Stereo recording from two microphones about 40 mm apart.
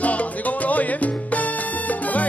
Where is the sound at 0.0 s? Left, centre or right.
Left.